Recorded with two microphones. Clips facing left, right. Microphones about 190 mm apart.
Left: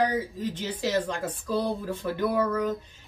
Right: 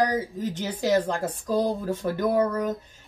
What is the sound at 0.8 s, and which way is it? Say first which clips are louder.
Speech: right 5 dB; 40° right (ahead or behind).